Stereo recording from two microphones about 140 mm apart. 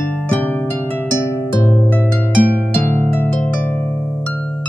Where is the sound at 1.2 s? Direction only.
15° left (ahead or behind).